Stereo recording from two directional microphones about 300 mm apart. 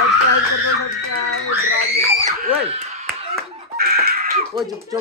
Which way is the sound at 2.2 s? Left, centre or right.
Right.